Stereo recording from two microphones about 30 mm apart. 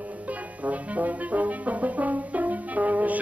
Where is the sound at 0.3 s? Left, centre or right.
Right.